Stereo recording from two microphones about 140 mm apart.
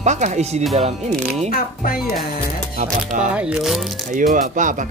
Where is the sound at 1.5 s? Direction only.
90° left.